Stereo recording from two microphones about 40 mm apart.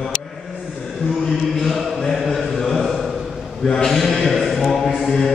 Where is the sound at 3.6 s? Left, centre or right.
Centre.